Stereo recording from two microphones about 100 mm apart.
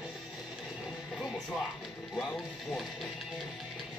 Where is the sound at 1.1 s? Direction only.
10° left (ahead or behind).